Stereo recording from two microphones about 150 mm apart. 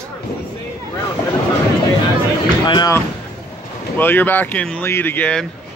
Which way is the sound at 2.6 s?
30° left (ahead or behind).